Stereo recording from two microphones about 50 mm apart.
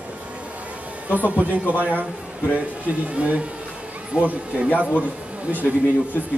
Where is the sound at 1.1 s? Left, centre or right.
Right.